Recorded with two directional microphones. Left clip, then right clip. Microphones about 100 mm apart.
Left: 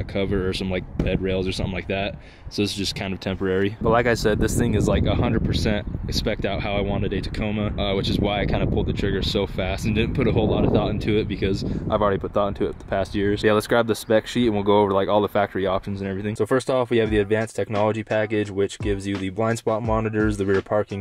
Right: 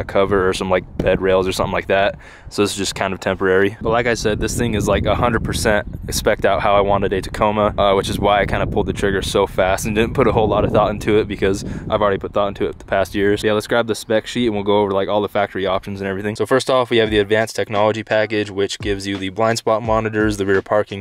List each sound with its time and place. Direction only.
0.1 s speech: 40° right (ahead or behind)
3.8 s speech: 5° right (ahead or behind)
4.6 s speech: 25° right (ahead or behind); by 11.5 s 40° right (ahead or behind)
11.9 s speech: 15° right (ahead or behind)
13.5 s speech: 5° right (ahead or behind)
16.0 s speech: 30° right (ahead or behind)
16.3 s speech: 15° right (ahead or behind)